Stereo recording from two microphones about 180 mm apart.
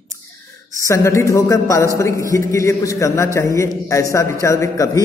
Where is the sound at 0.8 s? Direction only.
15° left (ahead or behind).